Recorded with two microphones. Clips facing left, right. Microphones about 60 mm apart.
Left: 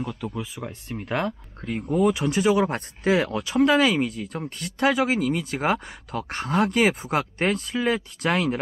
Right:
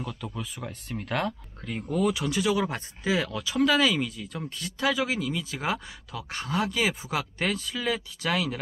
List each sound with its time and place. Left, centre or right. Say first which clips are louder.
0.0 s speech: left 5 dB; centre
1.0 s speech: left 3 dB; left
2.1 s speech: left 5 dB; left